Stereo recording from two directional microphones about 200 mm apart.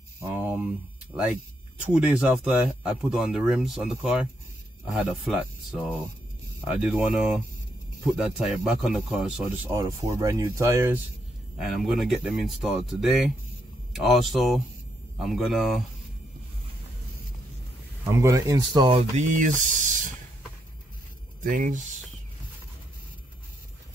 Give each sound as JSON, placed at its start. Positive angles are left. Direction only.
{"t": 0.2, "sound": "a sound", "side_deg": -10}
{"t": 1.1, "sound": "speech", "side_deg": -5}
{"t": 9.7, "sound": "speech", "side_deg": -15}
{"t": 11.6, "sound": "speech", "side_deg": 0}
{"t": 18.1, "sound": "speech", "side_deg": -15}
{"t": 19.1, "sound": "speech", "side_deg": -40}
{"t": 21.5, "sound": "speech", "side_deg": -40}